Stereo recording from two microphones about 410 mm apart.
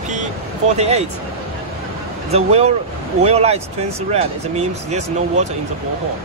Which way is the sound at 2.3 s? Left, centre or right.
Centre.